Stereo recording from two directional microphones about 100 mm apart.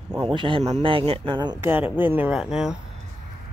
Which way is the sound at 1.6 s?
20° right (ahead or behind).